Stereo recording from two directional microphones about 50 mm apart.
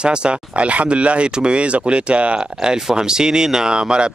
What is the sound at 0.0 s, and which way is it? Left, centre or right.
Speech, centre.